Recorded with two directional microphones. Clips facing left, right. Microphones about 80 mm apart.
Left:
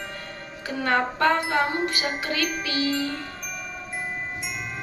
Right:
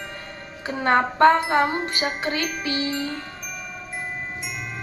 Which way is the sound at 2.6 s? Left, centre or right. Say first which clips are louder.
Right 1 dB; right.